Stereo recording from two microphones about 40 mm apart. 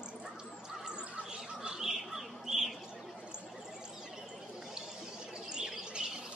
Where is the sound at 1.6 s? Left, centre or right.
Centre.